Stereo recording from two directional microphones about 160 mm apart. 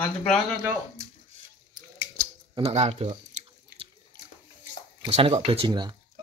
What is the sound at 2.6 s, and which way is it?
Speech, 40° right (ahead or behind).